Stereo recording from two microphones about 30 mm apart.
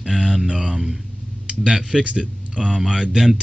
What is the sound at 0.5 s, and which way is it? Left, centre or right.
Mantra, right.